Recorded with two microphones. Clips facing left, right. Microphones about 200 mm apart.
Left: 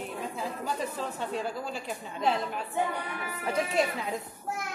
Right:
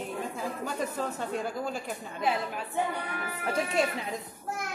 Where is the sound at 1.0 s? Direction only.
50° right (ahead or behind).